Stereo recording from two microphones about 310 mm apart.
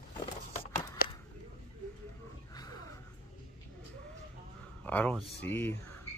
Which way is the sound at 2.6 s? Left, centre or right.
Centre.